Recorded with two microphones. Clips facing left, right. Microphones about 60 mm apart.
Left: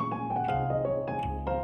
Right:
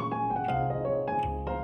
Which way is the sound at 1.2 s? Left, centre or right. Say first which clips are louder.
Right 3 dB; centre.